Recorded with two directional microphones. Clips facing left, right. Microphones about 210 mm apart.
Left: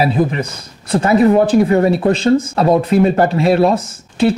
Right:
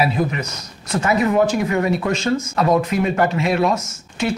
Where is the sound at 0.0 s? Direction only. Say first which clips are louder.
Left 5 dB; 30° left (ahead or behind).